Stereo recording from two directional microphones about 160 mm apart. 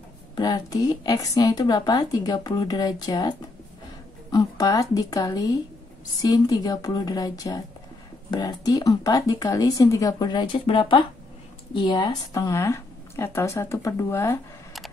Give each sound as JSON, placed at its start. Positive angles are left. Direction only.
{"t": 0.4, "sound": "a woman's voice", "side_deg": 25}